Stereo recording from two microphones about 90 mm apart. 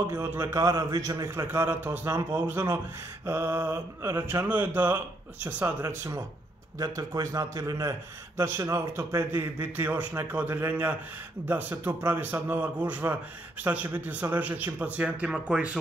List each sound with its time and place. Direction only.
0.1 s a man's voice: 30° right (ahead or behind)
0.7 s a man's voice: 40° right (ahead or behind); by 5.7 s 20° right (ahead or behind)
5.8 s a man's voice: 35° right (ahead or behind); by 15.8 s 15° right (ahead or behind)